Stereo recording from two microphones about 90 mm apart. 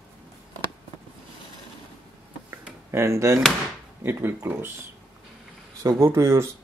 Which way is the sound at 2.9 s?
30° right (ahead or behind).